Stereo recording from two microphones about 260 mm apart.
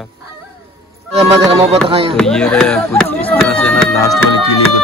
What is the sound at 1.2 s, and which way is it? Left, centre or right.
Music, right.